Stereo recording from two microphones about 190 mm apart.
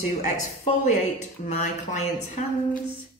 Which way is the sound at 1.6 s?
40° left (ahead or behind).